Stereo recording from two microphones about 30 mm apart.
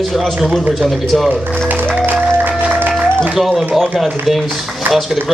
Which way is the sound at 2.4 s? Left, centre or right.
Right.